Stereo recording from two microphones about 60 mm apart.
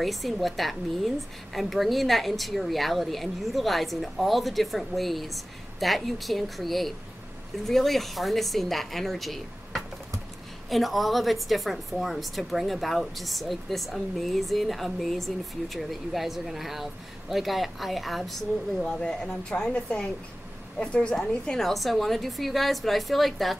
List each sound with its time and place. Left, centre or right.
0.0 s a woman's voice: centre
21.5 s a woman's voice: centre